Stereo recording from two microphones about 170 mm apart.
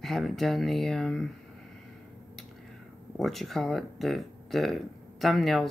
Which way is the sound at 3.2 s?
Centre (ahead or behind).